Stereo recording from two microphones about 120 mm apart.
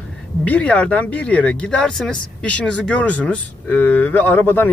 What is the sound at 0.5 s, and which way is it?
Speech, 10° left (ahead or behind).